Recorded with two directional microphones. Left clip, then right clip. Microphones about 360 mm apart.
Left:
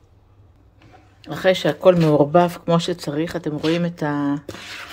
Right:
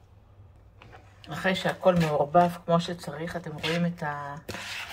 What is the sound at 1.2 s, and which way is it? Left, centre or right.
Speech, centre.